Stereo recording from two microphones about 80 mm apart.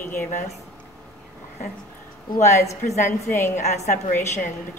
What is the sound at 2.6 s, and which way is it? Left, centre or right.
Speech, left.